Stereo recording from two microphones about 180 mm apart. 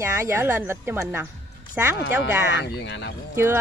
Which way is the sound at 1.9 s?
70° left (ahead or behind).